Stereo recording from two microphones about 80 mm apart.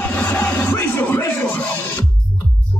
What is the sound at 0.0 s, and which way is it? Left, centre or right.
Music, left.